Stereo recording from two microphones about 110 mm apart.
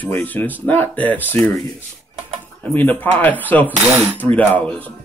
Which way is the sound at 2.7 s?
15° left (ahead or behind).